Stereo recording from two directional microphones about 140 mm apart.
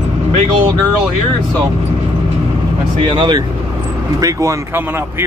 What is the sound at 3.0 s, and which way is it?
Speech, 35° right (ahead or behind).